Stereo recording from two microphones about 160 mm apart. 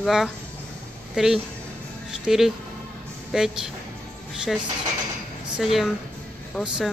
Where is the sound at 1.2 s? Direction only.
5° right (ahead or behind).